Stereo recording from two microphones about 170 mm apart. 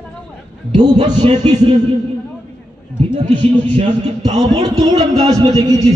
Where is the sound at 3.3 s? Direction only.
30° right (ahead or behind).